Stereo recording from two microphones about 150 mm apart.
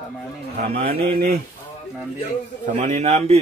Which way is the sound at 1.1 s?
80° right.